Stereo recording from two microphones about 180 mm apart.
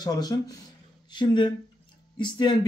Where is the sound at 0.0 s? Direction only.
20° left (ahead or behind).